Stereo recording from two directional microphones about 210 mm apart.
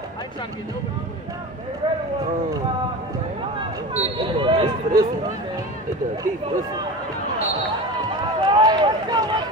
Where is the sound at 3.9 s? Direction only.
30° right (ahead or behind).